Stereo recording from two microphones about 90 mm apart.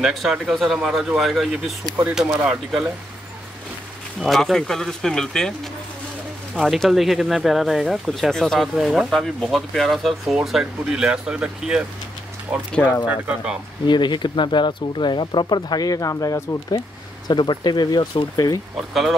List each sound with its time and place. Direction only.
0.0 s speech: 5° right (ahead or behind)
4.2 s speech: centre (ahead or behind)
13.8 s speech: 60° left (ahead or behind); by 16.8 s 40° left (ahead or behind)
17.3 s speech: 55° left (ahead or behind)
18.8 s speech: centre (ahead or behind)